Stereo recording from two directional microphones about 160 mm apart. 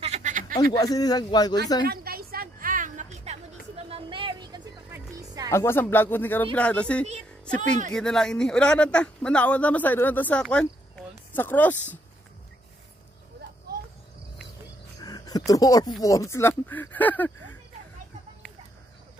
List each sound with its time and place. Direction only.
0.0 s a sound: 45° right (ahead or behind)
0.6 s speech: 25° left (ahead or behind)
1.9 s music: 70° right (ahead or behind); by 5.5 s 20° right (ahead or behind)
5.5 s speech: 15° left (ahead or behind)
15.0 s speech: 25° left (ahead or behind)